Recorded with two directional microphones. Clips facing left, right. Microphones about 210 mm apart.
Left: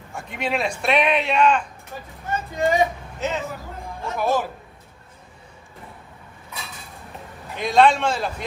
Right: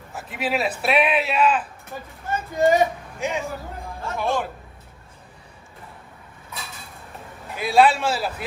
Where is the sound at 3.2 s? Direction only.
10° right (ahead or behind).